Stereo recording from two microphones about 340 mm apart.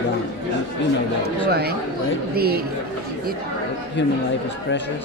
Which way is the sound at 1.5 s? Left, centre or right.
Right.